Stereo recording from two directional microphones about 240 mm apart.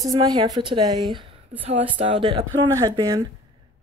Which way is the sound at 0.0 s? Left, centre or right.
Centre.